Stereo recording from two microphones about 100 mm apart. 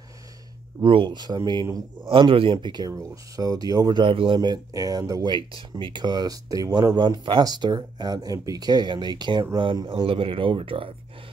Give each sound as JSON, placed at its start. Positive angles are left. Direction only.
{"t": 0.8, "sound": "speech", "side_deg": -55}
{"t": 2.9, "sound": "speech", "side_deg": -35}
{"t": 4.0, "sound": "speech", "side_deg": -60}
{"t": 4.4, "sound": "speech", "side_deg": -40}
{"t": 5.6, "sound": "speech", "side_deg": -55}
{"t": 9.6, "sound": "speech", "side_deg": -55}